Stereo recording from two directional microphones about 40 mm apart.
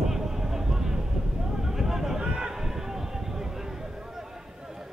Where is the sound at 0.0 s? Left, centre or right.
Centre.